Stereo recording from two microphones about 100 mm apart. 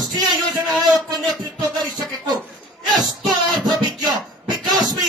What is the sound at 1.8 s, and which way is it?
Music, 40° right (ahead or behind).